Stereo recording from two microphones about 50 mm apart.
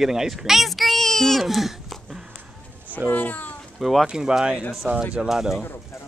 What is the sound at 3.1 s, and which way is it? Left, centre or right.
Speech, left.